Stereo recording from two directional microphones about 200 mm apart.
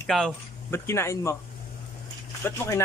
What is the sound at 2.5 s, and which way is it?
Speech, 15° left (ahead or behind).